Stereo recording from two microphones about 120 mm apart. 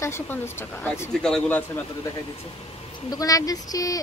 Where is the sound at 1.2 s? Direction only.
5° left (ahead or behind).